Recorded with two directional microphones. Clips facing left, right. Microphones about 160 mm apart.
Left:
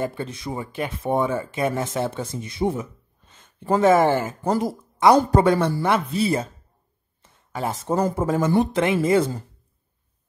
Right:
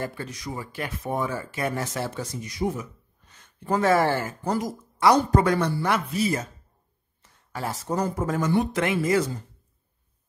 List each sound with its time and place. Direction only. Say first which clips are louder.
0.0 s speech: left 5 dB; 25° left (ahead or behind)
4.5 s a woman's voice: left 4 dB; 30° left (ahead or behind)
7.5 s speech: left 4 dB; 20° left (ahead or behind)